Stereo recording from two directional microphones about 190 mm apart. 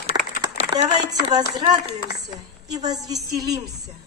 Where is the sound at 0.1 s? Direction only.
20° right (ahead or behind).